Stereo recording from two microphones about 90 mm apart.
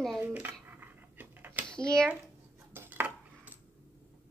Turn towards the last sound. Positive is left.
turn(degrees=-20)  # may be behind; listen again after turning